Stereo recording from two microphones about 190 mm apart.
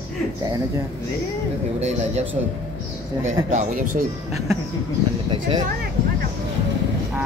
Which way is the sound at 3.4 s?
40° right (ahead or behind).